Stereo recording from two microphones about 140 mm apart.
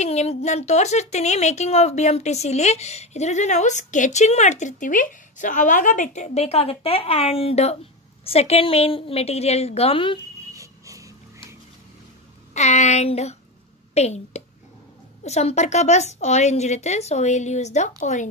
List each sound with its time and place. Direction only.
0.0 s a woman's voice: 50° left (ahead or behind)
10.5 s a sound: 25° right (ahead or behind)
12.5 s a woman's voice: 55° left (ahead or behind)